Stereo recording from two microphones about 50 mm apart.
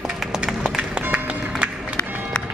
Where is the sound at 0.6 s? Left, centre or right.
Centre.